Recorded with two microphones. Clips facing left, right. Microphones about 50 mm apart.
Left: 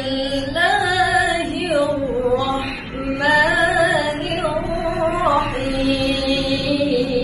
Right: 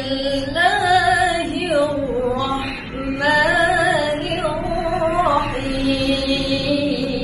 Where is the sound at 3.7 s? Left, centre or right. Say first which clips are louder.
Left 1 dB; centre.